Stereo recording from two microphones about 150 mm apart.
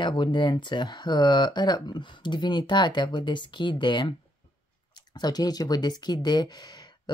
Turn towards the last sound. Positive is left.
turn(degrees=30)  # may be behind; listen again after turning